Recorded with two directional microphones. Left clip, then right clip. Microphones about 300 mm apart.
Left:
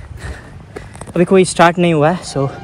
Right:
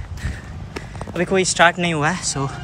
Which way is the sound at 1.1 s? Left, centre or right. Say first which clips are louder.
Left 6 dB; centre.